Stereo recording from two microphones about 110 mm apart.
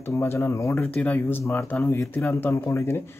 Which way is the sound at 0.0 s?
20° left (ahead or behind).